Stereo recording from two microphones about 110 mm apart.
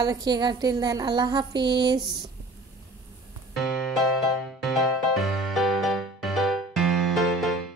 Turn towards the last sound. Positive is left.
turn(degrees=0)  # may be behind; listen again after turning